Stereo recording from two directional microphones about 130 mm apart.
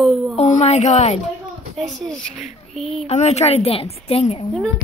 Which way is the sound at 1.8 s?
5° left (ahead or behind).